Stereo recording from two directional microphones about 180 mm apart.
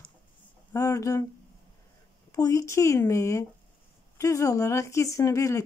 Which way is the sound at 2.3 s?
20° left (ahead or behind).